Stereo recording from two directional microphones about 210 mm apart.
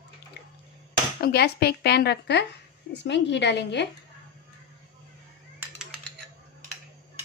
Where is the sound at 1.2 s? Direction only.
50° left (ahead or behind).